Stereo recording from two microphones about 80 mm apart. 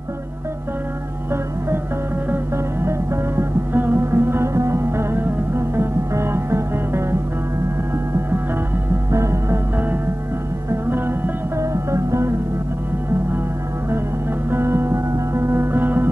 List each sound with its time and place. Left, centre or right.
2.3 s music: right
9.1 s music: right
10.7 s music: right
14.5 s music: right